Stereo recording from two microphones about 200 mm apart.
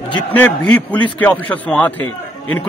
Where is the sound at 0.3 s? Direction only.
10° left (ahead or behind).